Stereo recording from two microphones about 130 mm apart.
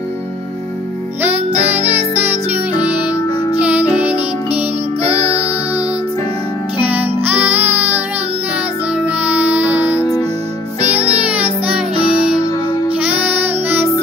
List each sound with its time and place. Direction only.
2.8 s music: 10° right (ahead or behind)
5.0 s music: 50° right (ahead or behind)
6.8 s music: 10° right (ahead or behind)
13.0 s child singing: 10° right (ahead or behind)